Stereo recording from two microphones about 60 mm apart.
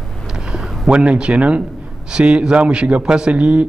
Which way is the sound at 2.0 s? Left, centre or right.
Centre.